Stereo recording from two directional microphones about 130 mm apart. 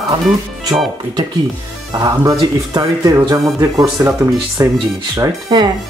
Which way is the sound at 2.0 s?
25° right (ahead or behind).